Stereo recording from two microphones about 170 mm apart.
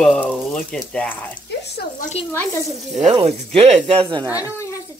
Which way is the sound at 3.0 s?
35° right (ahead or behind).